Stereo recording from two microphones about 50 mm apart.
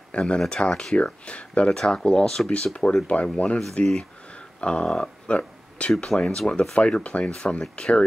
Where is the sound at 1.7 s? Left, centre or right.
Centre.